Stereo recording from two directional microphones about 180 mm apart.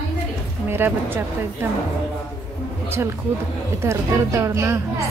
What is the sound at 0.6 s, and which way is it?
A woman's voice, 10° right (ahead or behind).